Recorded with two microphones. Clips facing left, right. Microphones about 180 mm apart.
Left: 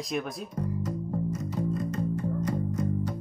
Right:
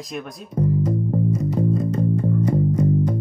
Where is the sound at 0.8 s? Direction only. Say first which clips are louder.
Right 9 dB; 50° right (ahead or behind).